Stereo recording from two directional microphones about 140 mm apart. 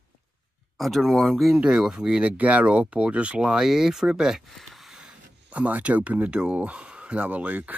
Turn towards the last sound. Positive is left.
turn(degrees=-10)  # may be behind; listen again after turning